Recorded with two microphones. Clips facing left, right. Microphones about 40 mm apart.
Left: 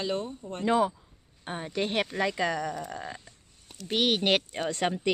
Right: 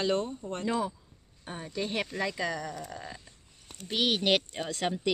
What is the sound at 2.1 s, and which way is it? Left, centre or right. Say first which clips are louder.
Speech: left 4 dB; left.